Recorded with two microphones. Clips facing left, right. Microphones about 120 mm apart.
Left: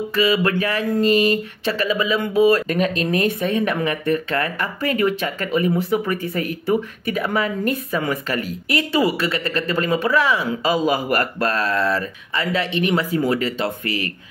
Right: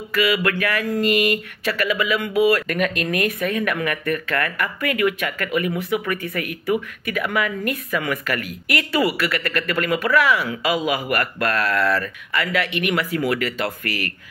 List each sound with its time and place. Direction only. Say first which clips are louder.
0.1 s speech: left 1 dB; 25° left (ahead or behind)